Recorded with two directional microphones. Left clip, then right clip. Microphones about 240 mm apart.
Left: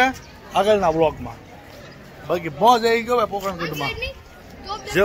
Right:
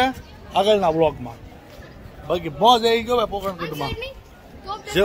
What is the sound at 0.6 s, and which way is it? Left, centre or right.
Speech, centre.